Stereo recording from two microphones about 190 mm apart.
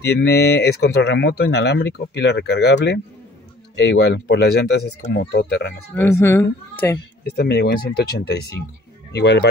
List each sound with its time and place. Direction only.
0.0 s speech: 65° left (ahead or behind)
5.9 s a woman's voice: 10° left (ahead or behind)
7.2 s speech: 60° left (ahead or behind)